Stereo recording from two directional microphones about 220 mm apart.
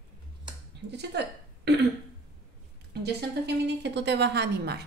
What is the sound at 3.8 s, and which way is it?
Speech, 50° right (ahead or behind).